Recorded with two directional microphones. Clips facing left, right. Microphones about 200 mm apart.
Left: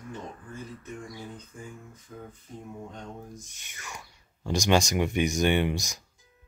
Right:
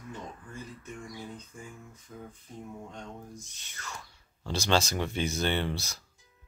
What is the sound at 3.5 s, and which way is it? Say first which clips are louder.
Speech: even; 15° left (ahead or behind).